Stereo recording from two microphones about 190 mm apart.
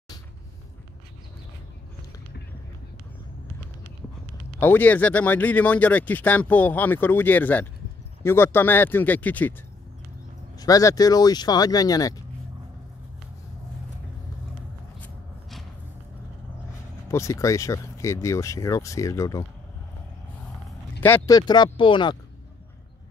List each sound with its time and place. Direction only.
4.6 s speech: 10° left (ahead or behind)
10.6 s speech: 20° left (ahead or behind)
17.1 s speech: 15° left (ahead or behind)
21.0 s speech: 15° left (ahead or behind)